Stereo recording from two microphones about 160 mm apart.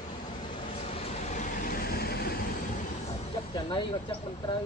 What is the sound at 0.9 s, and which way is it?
Vehicle, 40° left (ahead or behind).